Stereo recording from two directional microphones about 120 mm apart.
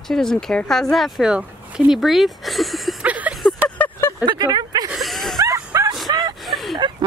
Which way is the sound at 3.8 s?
20° left (ahead or behind).